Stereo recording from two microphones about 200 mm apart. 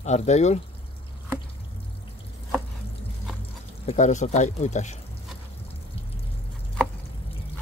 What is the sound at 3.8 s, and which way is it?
Speech, 35° left (ahead or behind).